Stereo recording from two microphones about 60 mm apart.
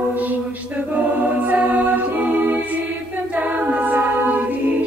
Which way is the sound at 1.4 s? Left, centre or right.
Right.